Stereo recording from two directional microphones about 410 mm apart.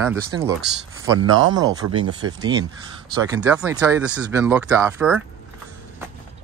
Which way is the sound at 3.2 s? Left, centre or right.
Centre.